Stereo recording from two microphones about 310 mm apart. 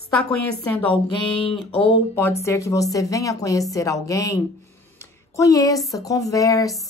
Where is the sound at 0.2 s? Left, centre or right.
Centre.